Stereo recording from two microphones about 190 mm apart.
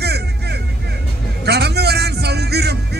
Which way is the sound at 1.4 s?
60° right (ahead or behind).